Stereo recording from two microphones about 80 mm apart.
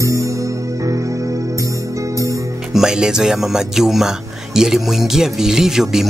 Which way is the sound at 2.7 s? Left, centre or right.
Centre.